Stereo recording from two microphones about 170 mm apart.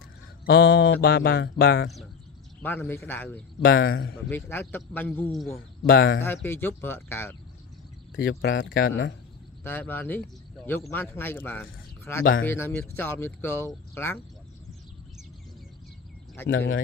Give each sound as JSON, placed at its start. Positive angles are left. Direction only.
{"t": 0.5, "sound": "music", "side_deg": 70}
{"t": 2.6, "sound": "speech", "side_deg": 10}
{"t": 3.6, "sound": "speech", "side_deg": 65}
{"t": 4.3, "sound": "speech", "side_deg": 10}
{"t": 5.9, "sound": "speech", "side_deg": 65}
{"t": 6.2, "sound": "speech", "side_deg": 15}
{"t": 8.2, "sound": "music", "side_deg": 70}
{"t": 9.6, "sound": "a man's voice", "side_deg": 10}
{"t": 16.4, "sound": "speech", "side_deg": 15}